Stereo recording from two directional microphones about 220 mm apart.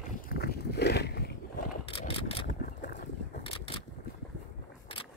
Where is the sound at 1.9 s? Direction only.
25° left (ahead or behind).